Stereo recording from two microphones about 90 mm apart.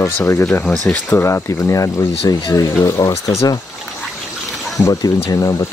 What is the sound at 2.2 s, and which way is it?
Speech, 50° left (ahead or behind).